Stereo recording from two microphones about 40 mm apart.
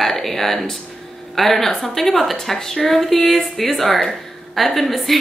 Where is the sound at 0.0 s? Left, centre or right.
Centre.